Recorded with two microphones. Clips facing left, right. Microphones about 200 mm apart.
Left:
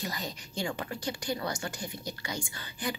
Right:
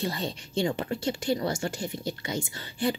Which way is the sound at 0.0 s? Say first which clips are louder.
Right 6 dB; 30° right (ahead or behind).